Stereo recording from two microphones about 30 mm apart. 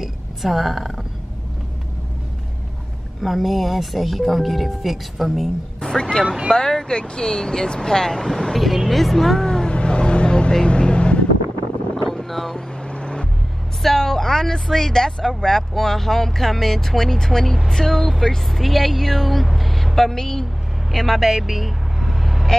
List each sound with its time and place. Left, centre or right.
0.0 s a woman's voice: centre
3.2 s speech: centre
5.9 s speech: left
6.2 s speech: right
6.5 s speech: centre
8.5 s speech: centre
9.7 s vehicle: left
12.1 s boat: centre
12.8 s vehicle: left
13.8 s speech: centre
17.9 s speech: centre
18.2 s speech: centre
20.9 s speech: centre
21.2 s vehicle: centre